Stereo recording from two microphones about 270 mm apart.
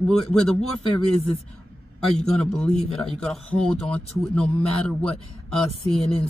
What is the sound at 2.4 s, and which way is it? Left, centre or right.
Speech, centre.